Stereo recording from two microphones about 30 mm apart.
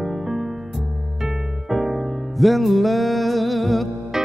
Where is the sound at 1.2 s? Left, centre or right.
Centre.